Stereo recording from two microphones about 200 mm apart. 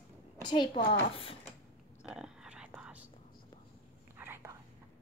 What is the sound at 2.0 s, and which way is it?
Whispering, 5° right (ahead or behind).